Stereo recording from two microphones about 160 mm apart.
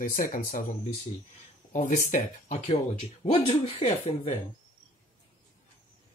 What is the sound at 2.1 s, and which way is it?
Speech, 40° left (ahead or behind).